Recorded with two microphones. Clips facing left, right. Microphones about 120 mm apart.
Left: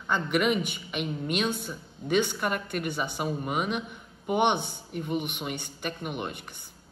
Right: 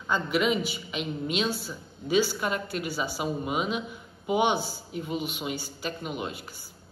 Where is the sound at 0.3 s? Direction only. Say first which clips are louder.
Left 1 dB; 55° left (ahead or behind).